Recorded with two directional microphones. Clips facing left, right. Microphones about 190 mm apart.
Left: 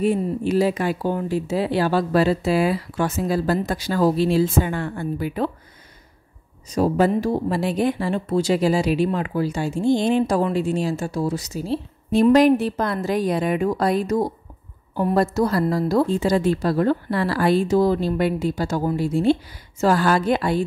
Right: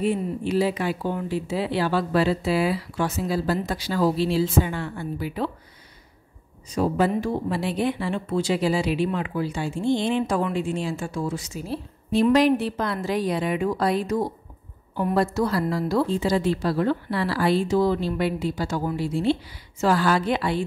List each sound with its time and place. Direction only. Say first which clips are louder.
0.0 s speech: left 4 dB; 45° left (ahead or behind)
6.7 s speech: left 4 dB; 40° left (ahead or behind)
12.1 s speech: left 4 dB; 45° left (ahead or behind)